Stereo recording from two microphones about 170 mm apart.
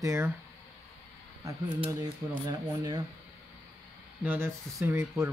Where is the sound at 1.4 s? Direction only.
20° right (ahead or behind).